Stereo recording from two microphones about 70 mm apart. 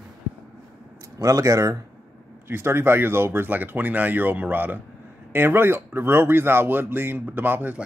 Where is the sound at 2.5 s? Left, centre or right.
Right.